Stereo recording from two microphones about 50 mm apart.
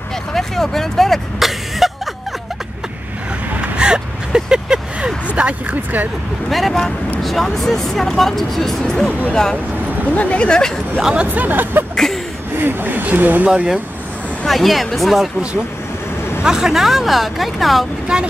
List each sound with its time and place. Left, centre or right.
0.3 s speech: centre
3.7 s vehicle: centre
5.3 s speech: right
6.5 s speech: centre
10.1 s speech: left
11.2 s speech: right
11.9 s a sound: centre
12.5 s speech: right
14.4 s speech: centre
16.4 s speech: centre
18.0 s vehicle: centre